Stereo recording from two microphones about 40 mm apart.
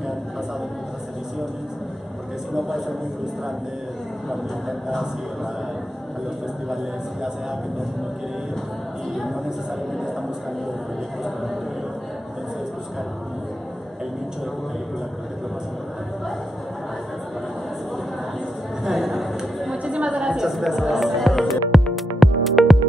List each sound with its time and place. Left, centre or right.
2.5 s speech: centre
4.3 s speech: centre
9.1 s speech: centre
18.9 s a sound: centre
19.8 s a sound: right
20.4 s music: centre